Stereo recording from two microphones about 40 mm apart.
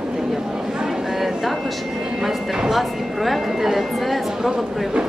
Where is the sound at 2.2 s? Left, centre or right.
Centre.